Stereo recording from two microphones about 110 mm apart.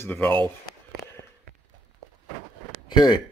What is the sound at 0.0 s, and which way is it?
Speech, 15° left (ahead or behind).